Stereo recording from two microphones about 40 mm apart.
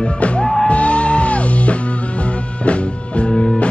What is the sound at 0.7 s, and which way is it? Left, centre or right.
Music, left.